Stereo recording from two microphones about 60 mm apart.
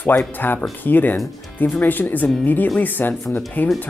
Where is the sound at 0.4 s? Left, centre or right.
Left.